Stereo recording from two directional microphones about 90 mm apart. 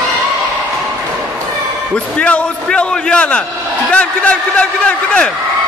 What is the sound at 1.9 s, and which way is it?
A man's voice, 15° left (ahead or behind).